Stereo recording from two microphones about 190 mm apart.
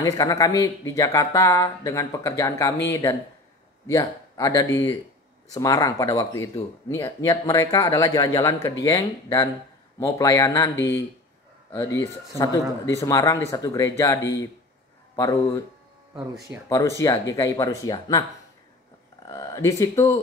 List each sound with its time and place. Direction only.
0.0 s speech: 20° left (ahead or behind)
16.6 s speech: 15° left (ahead or behind)
19.2 s speech: 20° left (ahead or behind)